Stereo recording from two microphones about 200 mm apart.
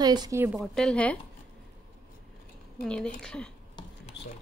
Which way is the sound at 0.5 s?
5° left (ahead or behind).